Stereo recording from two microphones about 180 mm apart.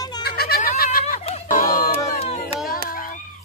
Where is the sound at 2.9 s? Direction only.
55° left (ahead or behind).